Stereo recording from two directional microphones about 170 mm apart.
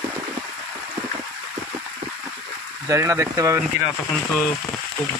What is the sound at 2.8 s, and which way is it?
Speech, 15° right (ahead or behind).